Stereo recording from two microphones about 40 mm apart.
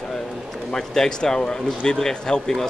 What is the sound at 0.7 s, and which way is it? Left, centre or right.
Speech, centre.